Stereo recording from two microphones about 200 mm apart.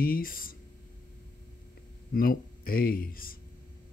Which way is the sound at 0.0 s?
45° left (ahead or behind).